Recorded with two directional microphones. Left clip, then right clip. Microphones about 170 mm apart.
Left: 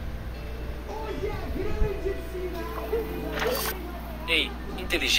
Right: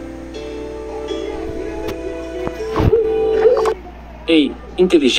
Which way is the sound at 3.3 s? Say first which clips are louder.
Right 14 dB; 60° left (ahead or behind).